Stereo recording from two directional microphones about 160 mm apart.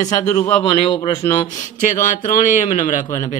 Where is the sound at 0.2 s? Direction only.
20° left (ahead or behind).